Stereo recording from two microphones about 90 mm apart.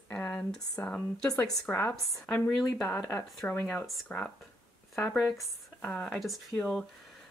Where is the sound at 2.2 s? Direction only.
10° left (ahead or behind).